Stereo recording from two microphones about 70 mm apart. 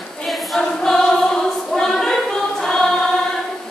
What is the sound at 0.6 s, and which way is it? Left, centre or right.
Choir, centre.